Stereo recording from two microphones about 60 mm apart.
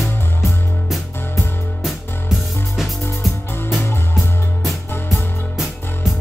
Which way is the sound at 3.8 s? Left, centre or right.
Left.